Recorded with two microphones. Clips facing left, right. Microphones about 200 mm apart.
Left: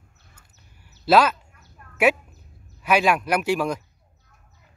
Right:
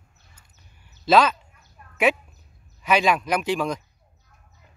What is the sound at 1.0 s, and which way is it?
Speech, 10° left (ahead or behind).